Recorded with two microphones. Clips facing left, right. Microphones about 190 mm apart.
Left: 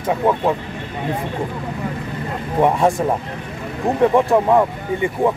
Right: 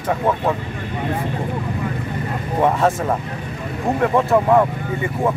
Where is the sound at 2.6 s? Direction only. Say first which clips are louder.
Left 2 dB; 15° left (ahead or behind).